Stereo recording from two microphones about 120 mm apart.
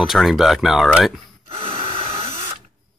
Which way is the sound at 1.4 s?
50° right (ahead or behind).